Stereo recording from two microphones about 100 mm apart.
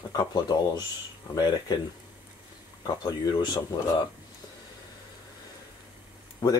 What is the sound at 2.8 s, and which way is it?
Speech, 40° left (ahead or behind).